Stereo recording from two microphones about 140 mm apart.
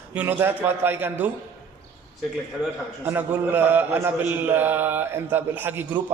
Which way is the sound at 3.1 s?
10° right (ahead or behind).